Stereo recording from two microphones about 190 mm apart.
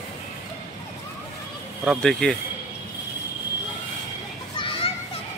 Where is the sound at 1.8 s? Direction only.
Centre (ahead or behind).